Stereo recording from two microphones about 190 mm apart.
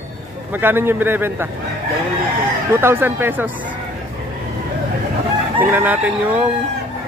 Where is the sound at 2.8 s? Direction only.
10° right (ahead or behind).